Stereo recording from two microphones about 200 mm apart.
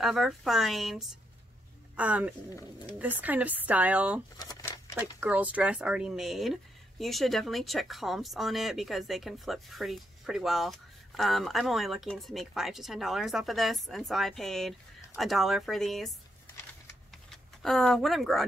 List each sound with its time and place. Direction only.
0.0 s speech: centre (ahead or behind)
4.4 s a sound: 20° left (ahead or behind)
4.9 s speech: 5° right (ahead or behind)
17.3 s speech: centre (ahead or behind)